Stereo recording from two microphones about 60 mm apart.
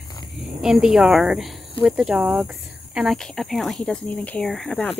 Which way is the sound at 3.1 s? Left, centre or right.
Centre.